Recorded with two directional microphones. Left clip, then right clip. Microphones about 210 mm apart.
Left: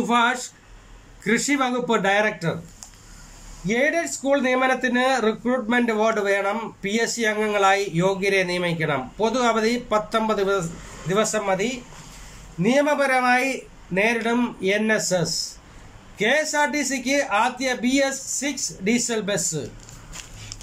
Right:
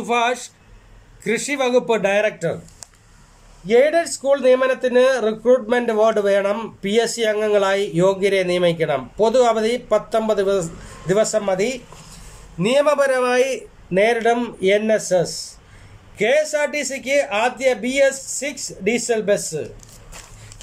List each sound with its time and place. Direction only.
0.1 s a man's voice: 10° right (ahead or behind)
3.6 s a man's voice: 10° right (ahead or behind)
12.6 s a man's voice: 10° right (ahead or behind)